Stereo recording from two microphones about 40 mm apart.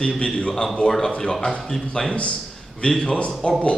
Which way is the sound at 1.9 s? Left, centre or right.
Left.